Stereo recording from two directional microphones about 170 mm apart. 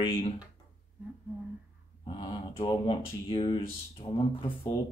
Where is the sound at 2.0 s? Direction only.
30° left (ahead or behind).